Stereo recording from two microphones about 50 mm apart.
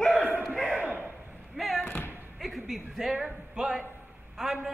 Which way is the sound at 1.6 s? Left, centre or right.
Centre.